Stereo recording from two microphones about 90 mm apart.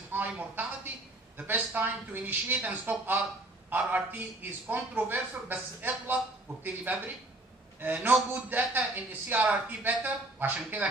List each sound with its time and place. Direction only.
0.1 s a woman's voice: 20° right (ahead or behind)